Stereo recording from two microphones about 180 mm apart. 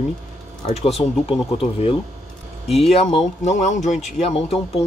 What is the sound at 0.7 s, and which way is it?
Speech, 35° left (ahead or behind).